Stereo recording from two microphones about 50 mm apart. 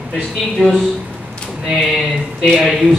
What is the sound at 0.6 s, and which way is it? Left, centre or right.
Speech, left.